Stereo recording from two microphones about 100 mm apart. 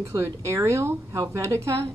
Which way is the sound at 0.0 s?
30° right (ahead or behind).